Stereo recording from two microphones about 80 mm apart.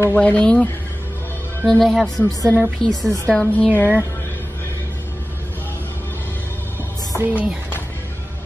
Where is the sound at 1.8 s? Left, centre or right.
Centre.